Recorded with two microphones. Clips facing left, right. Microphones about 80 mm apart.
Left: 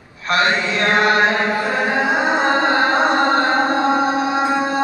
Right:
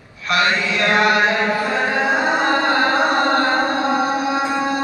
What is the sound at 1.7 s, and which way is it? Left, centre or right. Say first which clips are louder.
Music: even; centre.